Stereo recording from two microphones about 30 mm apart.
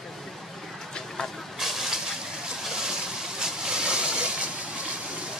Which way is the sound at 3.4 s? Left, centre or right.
Right.